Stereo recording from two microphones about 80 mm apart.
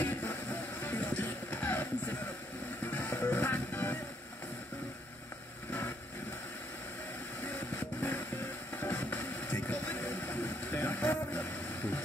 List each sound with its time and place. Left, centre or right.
0.0 s music: left
7.4 s vehicle: left
8.8 s music: left